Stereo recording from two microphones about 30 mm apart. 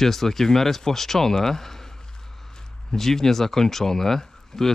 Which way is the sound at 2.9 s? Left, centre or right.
Centre.